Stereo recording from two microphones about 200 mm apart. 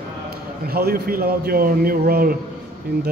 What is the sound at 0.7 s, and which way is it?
A man's voice, 50° right (ahead or behind).